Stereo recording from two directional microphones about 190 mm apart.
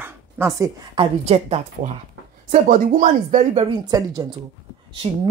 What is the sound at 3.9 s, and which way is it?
Speech, 20° right (ahead or behind).